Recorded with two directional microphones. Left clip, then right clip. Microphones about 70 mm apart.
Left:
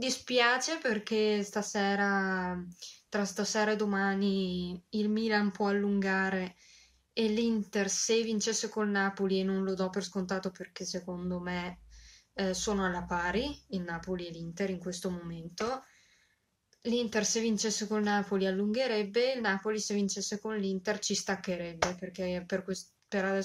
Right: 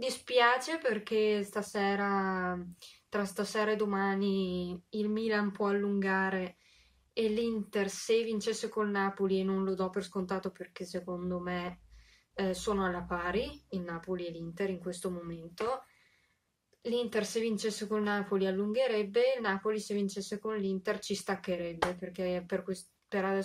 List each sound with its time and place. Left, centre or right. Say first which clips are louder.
0.0 s speech: right 1 dB; right
16.8 s speech: left 1 dB; right